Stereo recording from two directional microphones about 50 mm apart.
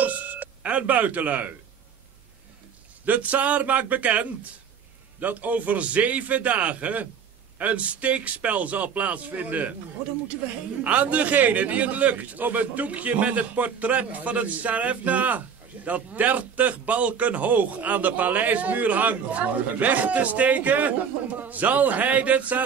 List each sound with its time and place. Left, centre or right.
0.0 s music: right
3.1 s a man's voice: right
10.8 s a man's voice: right